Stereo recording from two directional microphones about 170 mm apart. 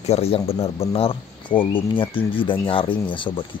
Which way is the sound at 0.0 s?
40° left (ahead or behind).